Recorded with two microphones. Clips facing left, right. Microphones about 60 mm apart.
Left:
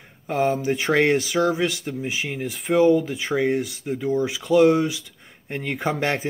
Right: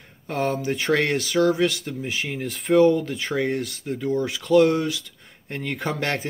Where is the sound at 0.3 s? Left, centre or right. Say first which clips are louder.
Left 3 dB; centre.